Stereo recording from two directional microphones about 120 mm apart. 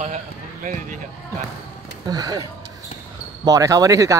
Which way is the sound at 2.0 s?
30° right (ahead or behind).